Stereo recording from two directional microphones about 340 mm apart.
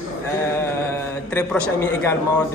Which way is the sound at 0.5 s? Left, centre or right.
Centre.